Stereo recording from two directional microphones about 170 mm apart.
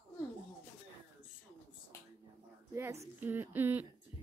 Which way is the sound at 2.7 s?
15° right (ahead or behind).